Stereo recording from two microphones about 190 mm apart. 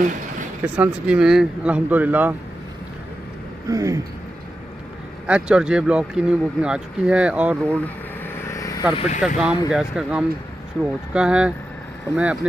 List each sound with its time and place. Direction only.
0.7 s speech: 5° right (ahead or behind)
3.6 s speech: 15° right (ahead or behind)
5.2 s speech: 5° right (ahead or behind)
8.5 s vehicle: 20° left (ahead or behind)
8.9 s speech: 35° left (ahead or behind)
9.2 s speech: 5° right (ahead or behind)